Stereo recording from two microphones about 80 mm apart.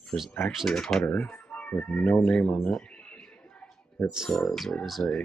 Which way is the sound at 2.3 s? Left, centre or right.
Centre.